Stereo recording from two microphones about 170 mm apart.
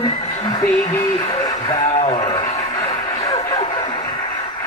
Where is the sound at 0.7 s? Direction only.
20° left (ahead or behind).